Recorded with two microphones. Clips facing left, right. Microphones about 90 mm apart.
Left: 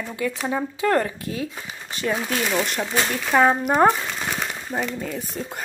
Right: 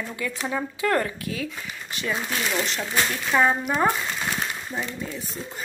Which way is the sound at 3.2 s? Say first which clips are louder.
Left 4 dB; 45° left (ahead or behind).